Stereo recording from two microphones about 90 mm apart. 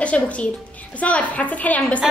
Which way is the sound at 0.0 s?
15° left (ahead or behind).